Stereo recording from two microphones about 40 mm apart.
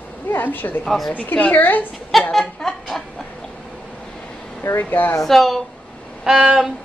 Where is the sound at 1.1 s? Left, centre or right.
Left.